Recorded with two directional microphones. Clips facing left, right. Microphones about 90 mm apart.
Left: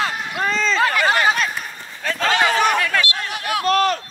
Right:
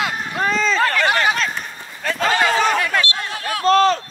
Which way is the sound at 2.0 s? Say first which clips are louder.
Right 1 dB; 5° right (ahead or behind).